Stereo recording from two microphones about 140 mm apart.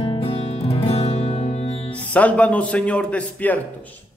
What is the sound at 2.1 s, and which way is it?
Music, 10° left (ahead or behind).